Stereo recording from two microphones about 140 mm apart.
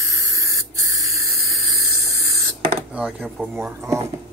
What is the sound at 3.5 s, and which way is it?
Speech, 20° right (ahead or behind).